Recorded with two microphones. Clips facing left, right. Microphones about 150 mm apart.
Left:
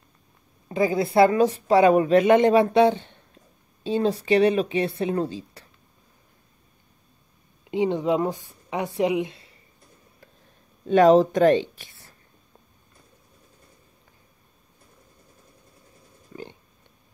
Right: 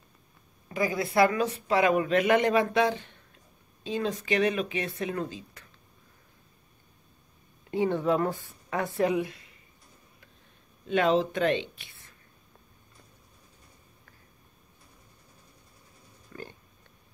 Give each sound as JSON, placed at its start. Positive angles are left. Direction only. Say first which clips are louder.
{"t": 0.7, "sound": "a woman's voice", "louder": "left 6 dB", "side_deg": 25}
{"t": 7.7, "sound": "speech", "louder": "left 3 dB", "side_deg": 15}
{"t": 10.9, "sound": "speech", "louder": "left 9 dB", "side_deg": 40}
{"t": 16.3, "sound": "a sound", "louder": "left 4 dB", "side_deg": 15}